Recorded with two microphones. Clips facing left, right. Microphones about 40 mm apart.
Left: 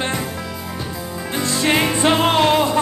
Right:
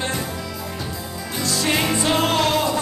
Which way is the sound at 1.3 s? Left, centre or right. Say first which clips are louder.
Left 4 dB; left.